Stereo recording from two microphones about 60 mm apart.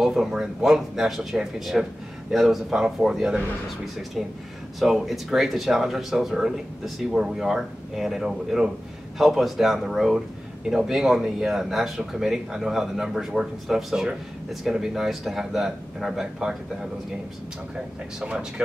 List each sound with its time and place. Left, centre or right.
0.0 s speech: centre